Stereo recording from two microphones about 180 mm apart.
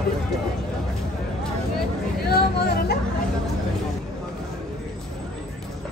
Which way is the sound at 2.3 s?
60° left (ahead or behind).